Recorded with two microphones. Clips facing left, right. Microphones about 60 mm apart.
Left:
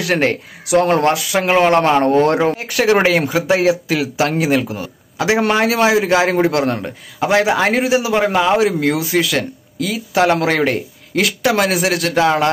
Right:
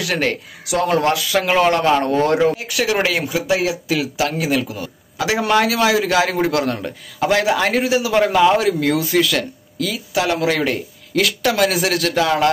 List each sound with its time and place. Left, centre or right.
0.0 s speech: left; by 8.6 s centre
8.6 s speech: left